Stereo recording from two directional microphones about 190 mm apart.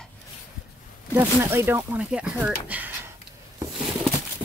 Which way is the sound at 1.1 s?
10° right (ahead or behind).